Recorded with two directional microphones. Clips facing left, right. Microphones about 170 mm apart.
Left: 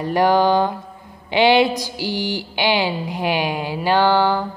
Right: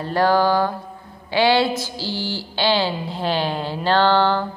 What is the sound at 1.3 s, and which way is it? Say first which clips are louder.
Mantra: left 3 dB; 20° left (ahead or behind).